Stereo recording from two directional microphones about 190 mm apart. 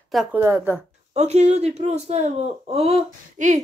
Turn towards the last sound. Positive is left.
turn(degrees=-35)  # may be behind; listen again after turning